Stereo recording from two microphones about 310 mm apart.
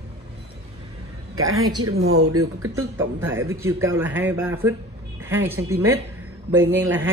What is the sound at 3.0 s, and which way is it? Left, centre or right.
A man's voice, centre.